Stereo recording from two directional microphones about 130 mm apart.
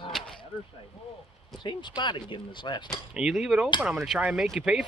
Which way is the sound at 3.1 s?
5° right (ahead or behind).